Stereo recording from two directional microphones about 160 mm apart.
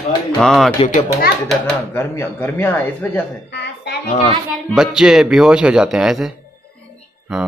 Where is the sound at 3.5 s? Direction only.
90° left.